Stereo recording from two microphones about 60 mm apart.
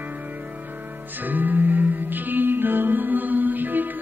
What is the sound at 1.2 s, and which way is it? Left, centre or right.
Music, right.